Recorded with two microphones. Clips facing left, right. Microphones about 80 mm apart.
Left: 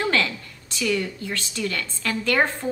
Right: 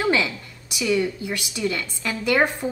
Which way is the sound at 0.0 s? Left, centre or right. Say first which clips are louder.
Right 2 dB; centre.